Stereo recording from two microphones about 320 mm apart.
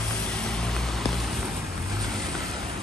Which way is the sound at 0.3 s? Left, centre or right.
Centre.